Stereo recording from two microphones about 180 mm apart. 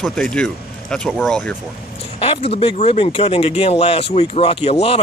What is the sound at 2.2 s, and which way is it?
Speech, 30° left (ahead or behind).